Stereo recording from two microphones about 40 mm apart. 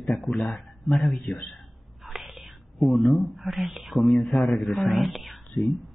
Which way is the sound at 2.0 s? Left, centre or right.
Centre.